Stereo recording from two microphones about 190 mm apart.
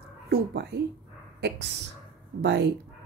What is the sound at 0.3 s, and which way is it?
Speech, 55° right (ahead or behind).